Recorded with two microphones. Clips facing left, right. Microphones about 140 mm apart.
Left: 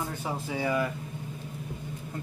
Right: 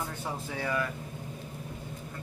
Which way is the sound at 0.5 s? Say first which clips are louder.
Left 4 dB; 15° left (ahead or behind).